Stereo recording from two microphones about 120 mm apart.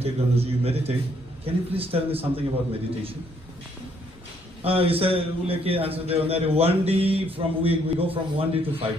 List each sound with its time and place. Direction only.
0.0 s a man's voice: 55° right (ahead or behind)
4.6 s a man's voice: 50° right (ahead or behind)